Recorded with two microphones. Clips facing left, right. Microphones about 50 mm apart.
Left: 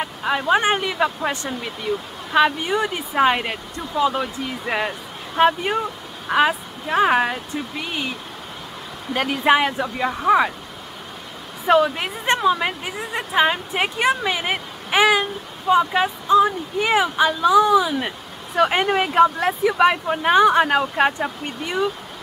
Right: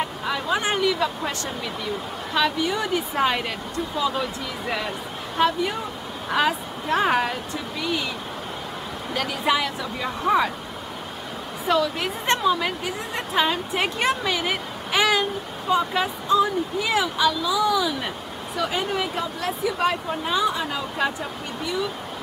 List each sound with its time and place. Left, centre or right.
0.2 s a woman's voice: left
6.2 s speech: centre
7.7 s speech: left
9.1 s a woman's voice: left
10.0 s speech: centre
11.6 s a woman's voice: left
12.3 s speech: centre
13.8 s speech: centre
14.2 s a sound: left
15.7 s speech: left
18.6 s speech: left